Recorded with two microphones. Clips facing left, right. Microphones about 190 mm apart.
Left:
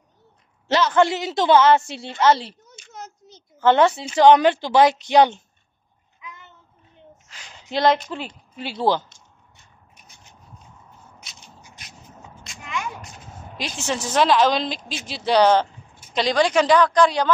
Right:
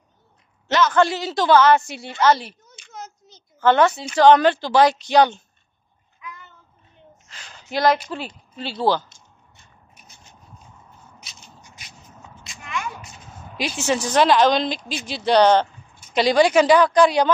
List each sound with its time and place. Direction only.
0.7 s a woman's voice: 30° left (ahead or behind)
2.8 s a sound: 45° left (ahead or behind)
3.5 s a woman's voice: 20° left (ahead or behind)
6.2 s a sound: 20° left (ahead or behind)
8.5 s a woman's voice: 15° left (ahead or behind)
12.8 s a woman's voice: centre (ahead or behind)